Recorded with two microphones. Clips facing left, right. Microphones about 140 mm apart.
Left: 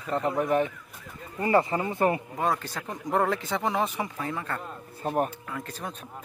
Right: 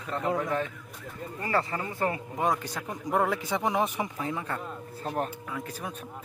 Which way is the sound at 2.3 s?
15° right (ahead or behind).